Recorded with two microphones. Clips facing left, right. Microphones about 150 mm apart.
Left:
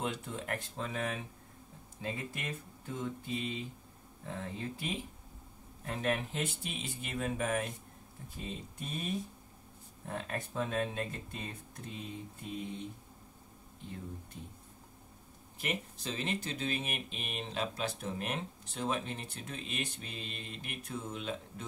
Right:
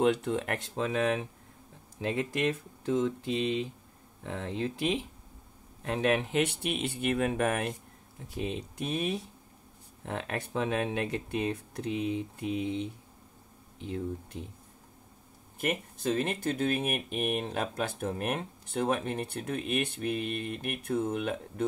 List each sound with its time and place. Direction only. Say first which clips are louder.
0.0 s speech: right 11 dB; 70° right (ahead or behind)
15.6 s speech: right 7 dB; 50° right (ahead or behind)